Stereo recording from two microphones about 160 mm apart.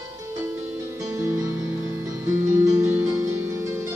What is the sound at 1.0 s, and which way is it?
Music, 20° right (ahead or behind).